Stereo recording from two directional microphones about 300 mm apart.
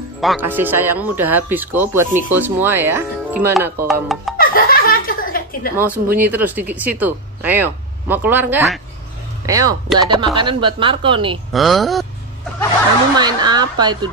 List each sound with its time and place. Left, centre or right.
0.2 s speech: centre
4.4 s snicker: left
5.8 s speech: centre
11.5 s speech: centre
13.1 s speech: centre